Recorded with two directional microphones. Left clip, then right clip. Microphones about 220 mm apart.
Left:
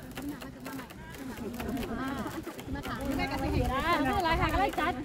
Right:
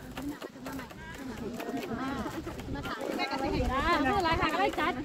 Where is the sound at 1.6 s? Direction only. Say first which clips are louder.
Even; 30° left (ahead or behind).